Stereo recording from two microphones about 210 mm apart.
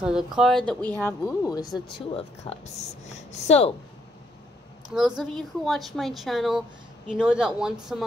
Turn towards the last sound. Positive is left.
turn(degrees=-5)  # may be behind; listen again after turning